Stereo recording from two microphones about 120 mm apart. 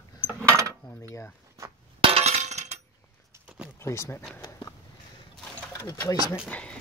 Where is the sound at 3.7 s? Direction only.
25° left (ahead or behind).